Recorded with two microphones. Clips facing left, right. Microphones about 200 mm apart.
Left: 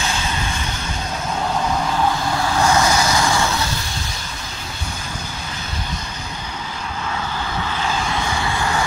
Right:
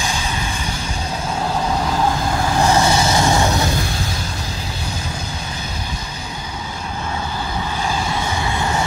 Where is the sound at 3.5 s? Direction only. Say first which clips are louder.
Right 4 dB; 50° right (ahead or behind).